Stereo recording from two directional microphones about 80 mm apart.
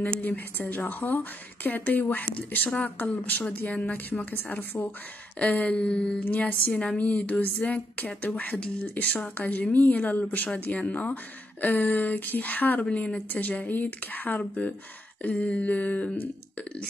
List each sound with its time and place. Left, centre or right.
0.2 s speech: left
5.4 s a sound: centre
6.2 s speech: left